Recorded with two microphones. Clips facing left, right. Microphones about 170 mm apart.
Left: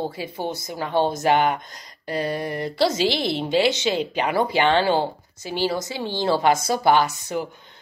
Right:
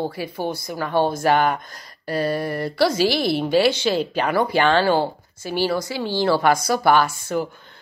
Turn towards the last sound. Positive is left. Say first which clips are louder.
# right 2 dB
turn(degrees=15)  # may be behind; listen again after turning